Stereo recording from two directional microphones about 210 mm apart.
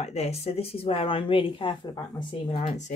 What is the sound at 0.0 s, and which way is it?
A woman's voice, 30° left (ahead or behind).